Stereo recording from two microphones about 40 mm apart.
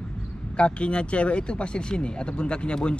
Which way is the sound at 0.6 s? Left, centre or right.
Left.